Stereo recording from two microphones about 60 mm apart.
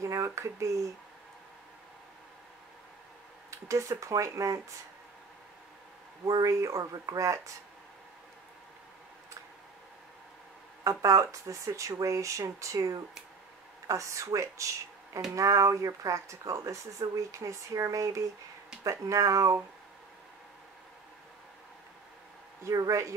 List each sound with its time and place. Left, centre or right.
0.0 s speech: right
3.4 s speech: right
6.2 s speech: right
10.8 s speech: right
13.8 s speech: right
22.6 s speech: right